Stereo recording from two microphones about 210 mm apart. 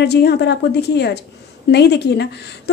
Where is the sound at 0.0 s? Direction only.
50° left (ahead or behind).